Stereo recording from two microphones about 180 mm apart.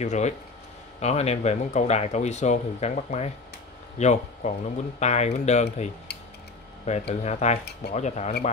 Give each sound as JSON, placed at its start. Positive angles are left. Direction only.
{"t": 0.0, "sound": "speech", "side_deg": 40}
{"t": 6.9, "sound": "speech", "side_deg": 35}